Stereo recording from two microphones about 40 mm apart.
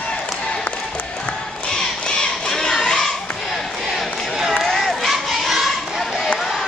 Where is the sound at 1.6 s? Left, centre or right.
Left.